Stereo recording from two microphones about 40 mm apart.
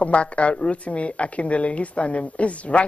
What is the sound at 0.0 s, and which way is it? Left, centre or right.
A woman's voice, left.